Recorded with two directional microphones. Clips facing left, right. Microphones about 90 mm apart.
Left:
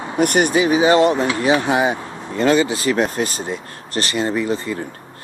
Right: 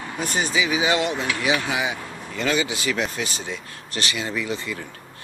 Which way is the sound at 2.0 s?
30° left (ahead or behind).